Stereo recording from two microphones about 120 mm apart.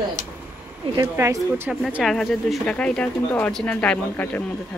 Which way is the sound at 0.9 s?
25° right (ahead or behind).